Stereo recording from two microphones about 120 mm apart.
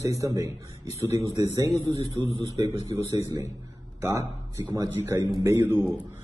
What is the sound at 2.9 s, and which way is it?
A man's voice, 20° right (ahead or behind).